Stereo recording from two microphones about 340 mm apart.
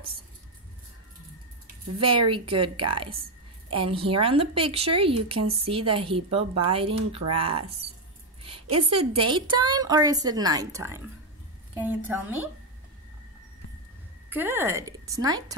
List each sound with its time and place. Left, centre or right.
2.0 s a woman's voice: centre
14.3 s a woman's voice: centre